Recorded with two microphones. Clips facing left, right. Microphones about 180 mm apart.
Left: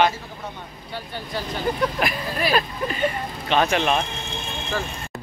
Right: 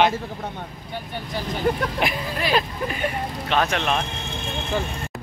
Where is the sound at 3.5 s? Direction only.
Centre (ahead or behind).